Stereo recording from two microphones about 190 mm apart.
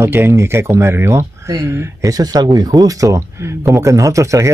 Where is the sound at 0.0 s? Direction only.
10° right (ahead or behind).